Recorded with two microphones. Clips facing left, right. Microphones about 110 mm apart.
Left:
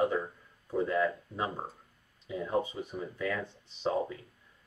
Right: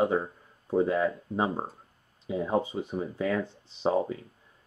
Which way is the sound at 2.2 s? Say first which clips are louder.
Right 4 dB; 45° right (ahead or behind).